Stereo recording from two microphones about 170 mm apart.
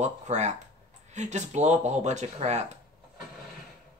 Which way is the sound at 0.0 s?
45° right (ahead or behind).